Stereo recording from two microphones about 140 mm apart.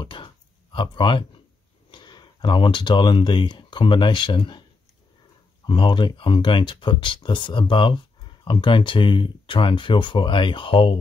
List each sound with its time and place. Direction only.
0.0 s a sound: 35° left (ahead or behind)
0.7 s speech: 35° left (ahead or behind)
5.7 s speech: 35° left (ahead or behind)